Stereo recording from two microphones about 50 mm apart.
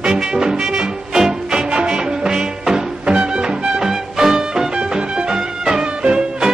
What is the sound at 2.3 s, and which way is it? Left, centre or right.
Music, centre.